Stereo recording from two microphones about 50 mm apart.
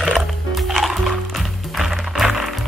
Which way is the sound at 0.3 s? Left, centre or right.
Centre.